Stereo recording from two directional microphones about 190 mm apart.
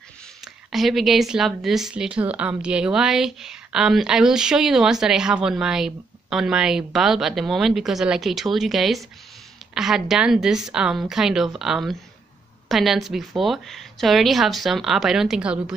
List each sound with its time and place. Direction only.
0.7 s speech: centre (ahead or behind)